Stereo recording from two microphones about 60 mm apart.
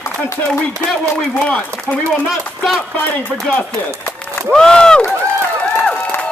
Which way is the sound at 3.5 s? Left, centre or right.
Left.